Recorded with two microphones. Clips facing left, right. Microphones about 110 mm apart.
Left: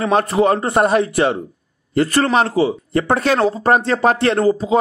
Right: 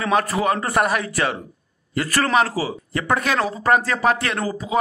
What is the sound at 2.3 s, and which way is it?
Speech, 25° left (ahead or behind).